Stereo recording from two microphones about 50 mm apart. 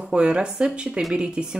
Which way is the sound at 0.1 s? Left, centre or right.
Centre.